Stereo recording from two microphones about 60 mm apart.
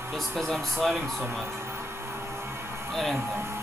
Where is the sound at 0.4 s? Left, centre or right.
Centre.